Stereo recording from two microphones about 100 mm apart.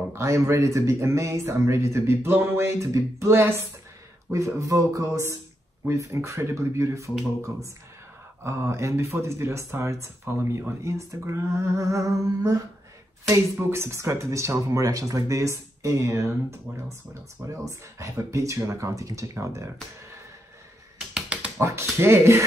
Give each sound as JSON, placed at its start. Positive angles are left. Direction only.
{"t": 0.1, "sound": "speech", "side_deg": -30}
{"t": 8.5, "sound": "speech", "side_deg": -25}
{"t": 17.6, "sound": "speech", "side_deg": -30}
{"t": 21.1, "sound": "dog", "side_deg": -10}
{"t": 21.5, "sound": "speech", "side_deg": -25}